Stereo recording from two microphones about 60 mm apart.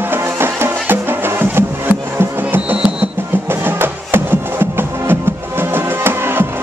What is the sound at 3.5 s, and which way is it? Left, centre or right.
Music, right.